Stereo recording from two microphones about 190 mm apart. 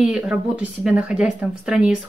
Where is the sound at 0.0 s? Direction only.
5° right (ahead or behind).